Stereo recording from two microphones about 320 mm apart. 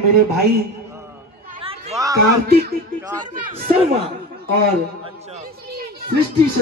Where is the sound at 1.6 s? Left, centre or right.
Centre.